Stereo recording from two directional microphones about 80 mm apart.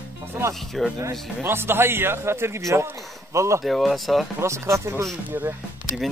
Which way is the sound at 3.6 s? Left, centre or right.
Centre.